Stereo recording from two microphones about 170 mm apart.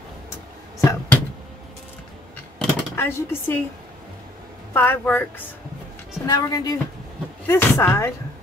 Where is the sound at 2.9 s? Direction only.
15° left (ahead or behind).